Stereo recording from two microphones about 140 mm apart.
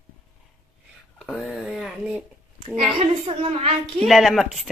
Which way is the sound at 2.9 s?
45° right (ahead or behind).